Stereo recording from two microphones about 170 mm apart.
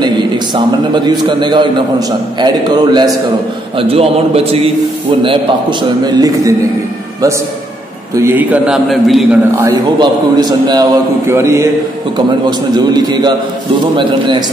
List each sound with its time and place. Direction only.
0.9 s a man's voice: 25° right (ahead or behind)
8.2 s a man's voice: 10° right (ahead or behind)
9.9 s a man's voice: 25° right (ahead or behind)